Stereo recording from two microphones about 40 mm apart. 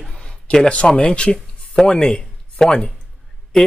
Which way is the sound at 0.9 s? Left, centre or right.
Left.